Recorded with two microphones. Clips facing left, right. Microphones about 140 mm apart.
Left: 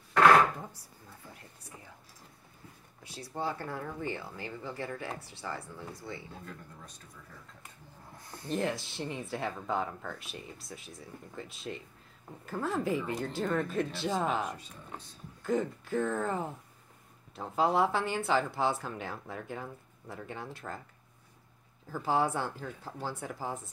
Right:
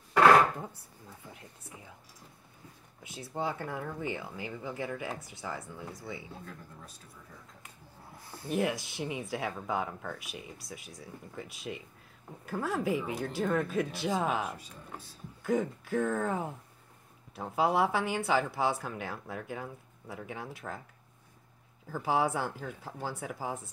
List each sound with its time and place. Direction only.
1.3 s speech: 15° right (ahead or behind)
3.0 s speech: 20° right (ahead or behind)
8.3 s speech: 10° right (ahead or behind)
21.9 s speech: 10° right (ahead or behind)